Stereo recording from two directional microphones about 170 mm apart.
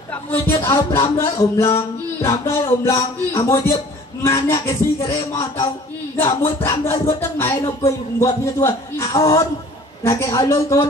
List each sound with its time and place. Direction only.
0.1 s music: 15° left (ahead or behind)
6.7 s music: 15° left (ahead or behind)
10.0 s speech: 15° left (ahead or behind)